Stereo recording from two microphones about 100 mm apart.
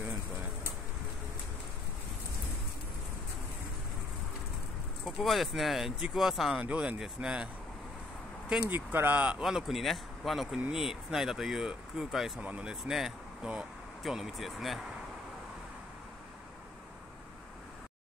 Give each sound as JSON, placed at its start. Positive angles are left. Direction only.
{"t": 5.0, "sound": "speech", "side_deg": 0}
{"t": 8.6, "sound": "speech", "side_deg": -20}
{"t": 9.4, "sound": "speech", "side_deg": -5}
{"t": 12.4, "sound": "speech", "side_deg": -15}